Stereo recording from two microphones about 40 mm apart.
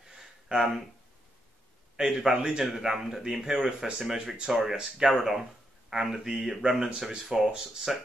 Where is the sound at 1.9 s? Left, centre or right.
Centre.